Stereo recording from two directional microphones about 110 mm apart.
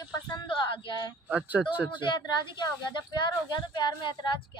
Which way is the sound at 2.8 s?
45° left (ahead or behind).